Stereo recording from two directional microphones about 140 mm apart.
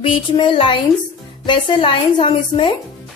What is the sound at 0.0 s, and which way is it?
A woman's voice, 35° left (ahead or behind).